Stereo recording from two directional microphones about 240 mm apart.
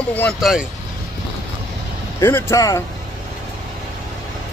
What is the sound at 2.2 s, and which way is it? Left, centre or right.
Speech, centre.